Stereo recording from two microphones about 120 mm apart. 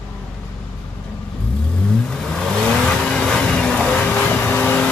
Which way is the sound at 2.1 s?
5° left (ahead or behind).